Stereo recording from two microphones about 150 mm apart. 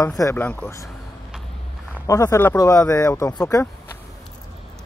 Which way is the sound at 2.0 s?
20° left (ahead or behind).